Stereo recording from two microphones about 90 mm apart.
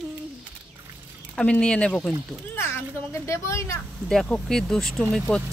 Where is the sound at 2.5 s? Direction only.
30° left (ahead or behind).